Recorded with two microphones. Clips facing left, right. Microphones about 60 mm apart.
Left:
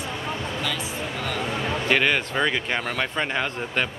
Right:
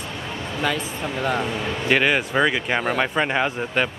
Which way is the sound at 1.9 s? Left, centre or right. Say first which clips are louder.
Right 3 dB; centre.